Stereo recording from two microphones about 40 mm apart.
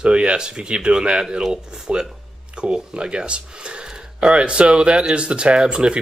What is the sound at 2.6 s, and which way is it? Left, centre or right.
Speech, right.